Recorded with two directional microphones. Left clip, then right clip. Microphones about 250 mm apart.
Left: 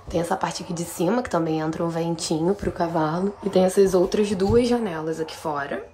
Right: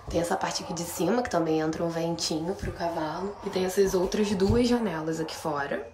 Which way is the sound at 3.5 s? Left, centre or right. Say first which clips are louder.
Left 7 dB; centre.